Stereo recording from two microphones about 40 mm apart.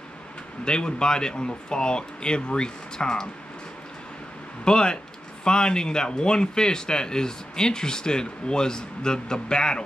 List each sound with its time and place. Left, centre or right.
0.7 s speech: left
4.6 s speech: left